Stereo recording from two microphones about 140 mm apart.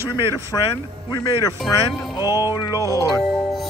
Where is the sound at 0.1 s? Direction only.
30° left (ahead or behind).